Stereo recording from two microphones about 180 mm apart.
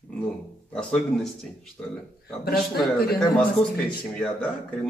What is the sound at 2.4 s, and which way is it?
Speech, 60° left (ahead or behind).